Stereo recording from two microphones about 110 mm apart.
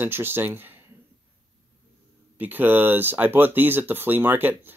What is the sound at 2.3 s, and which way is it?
Speech, 15° right (ahead or behind).